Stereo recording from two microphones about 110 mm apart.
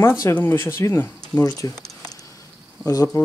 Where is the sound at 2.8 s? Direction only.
30° left (ahead or behind).